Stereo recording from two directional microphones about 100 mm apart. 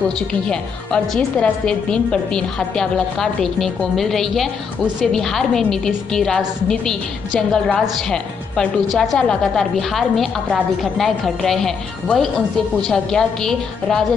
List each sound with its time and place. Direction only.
0.3 s a woman's voice: 10° left (ahead or behind)